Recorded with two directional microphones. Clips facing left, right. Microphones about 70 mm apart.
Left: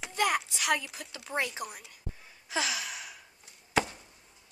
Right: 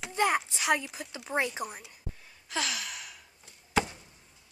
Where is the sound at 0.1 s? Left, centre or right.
Right.